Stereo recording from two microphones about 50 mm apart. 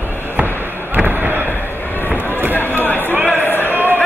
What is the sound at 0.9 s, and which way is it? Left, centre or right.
Slam, right.